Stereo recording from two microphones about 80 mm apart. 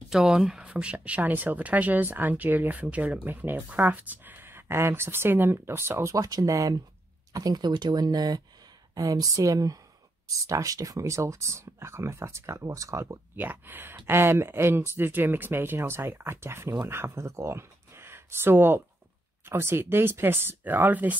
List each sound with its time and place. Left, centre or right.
0.1 s speech: centre; by 6.1 s right
6.1 s speech: right
7.3 s speech: right
13.4 s speech: right